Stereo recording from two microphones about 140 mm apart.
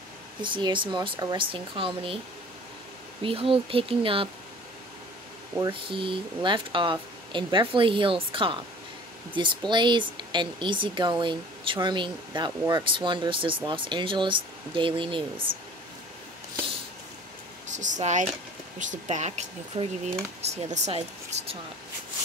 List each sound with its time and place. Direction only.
0.4 s speech: 35° right (ahead or behind)
3.2 s speech: 40° right (ahead or behind)
5.7 s speech: 40° right (ahead or behind)
17.6 s speech: 60° right (ahead or behind)
20.4 s speech: 50° right (ahead or behind)